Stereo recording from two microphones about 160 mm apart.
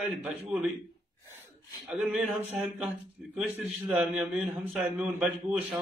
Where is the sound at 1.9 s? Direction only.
5° right (ahead or behind).